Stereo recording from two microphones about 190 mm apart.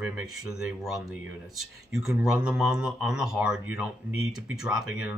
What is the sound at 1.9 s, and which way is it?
Speech, centre (ahead or behind).